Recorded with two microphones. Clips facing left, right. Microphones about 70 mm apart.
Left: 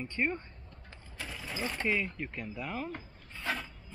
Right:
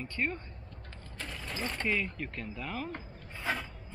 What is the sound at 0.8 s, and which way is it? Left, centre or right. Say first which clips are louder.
Speech: even; centre.